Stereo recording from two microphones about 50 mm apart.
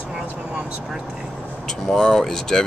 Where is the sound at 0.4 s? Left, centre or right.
Right.